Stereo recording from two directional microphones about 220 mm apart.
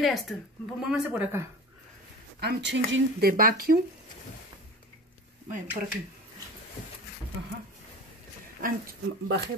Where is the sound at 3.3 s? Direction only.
40° right (ahead or behind).